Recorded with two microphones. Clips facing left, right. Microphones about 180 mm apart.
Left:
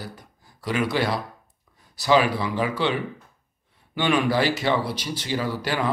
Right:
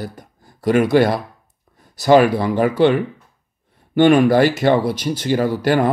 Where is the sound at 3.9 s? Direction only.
50° right (ahead or behind).